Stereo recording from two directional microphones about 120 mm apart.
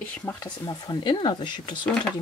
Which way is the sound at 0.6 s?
35° left (ahead or behind).